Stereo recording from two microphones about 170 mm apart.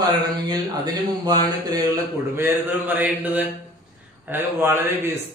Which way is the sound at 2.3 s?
10° right (ahead or behind).